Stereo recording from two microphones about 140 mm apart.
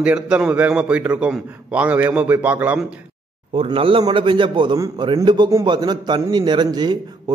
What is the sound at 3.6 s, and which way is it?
A man's voice, 40° right (ahead or behind).